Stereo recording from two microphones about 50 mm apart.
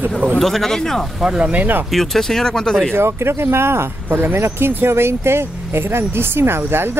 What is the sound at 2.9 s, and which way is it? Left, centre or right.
Speech, right.